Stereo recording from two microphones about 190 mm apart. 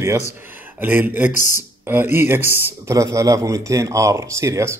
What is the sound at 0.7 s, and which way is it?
Speech, 10° right (ahead or behind).